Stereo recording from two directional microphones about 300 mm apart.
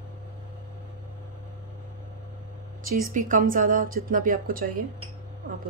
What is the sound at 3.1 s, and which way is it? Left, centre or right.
Speech, right.